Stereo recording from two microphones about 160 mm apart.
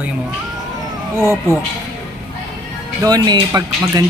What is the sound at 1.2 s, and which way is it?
Speech, 15° right (ahead or behind).